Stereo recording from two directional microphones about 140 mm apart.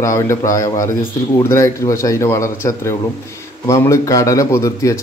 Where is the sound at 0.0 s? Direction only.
20° left (ahead or behind).